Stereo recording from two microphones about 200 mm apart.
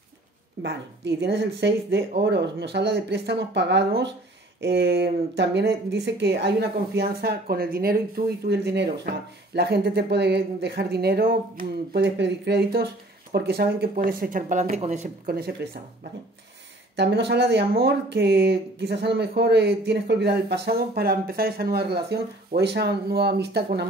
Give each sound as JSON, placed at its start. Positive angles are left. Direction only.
{"t": 0.6, "sound": "speech", "side_deg": -60}
{"t": 15.2, "sound": "speech", "side_deg": -50}